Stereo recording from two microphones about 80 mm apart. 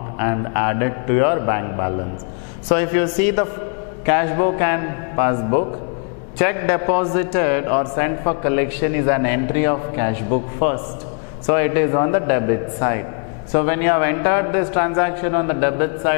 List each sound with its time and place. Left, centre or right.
0.2 s a man's voice: centre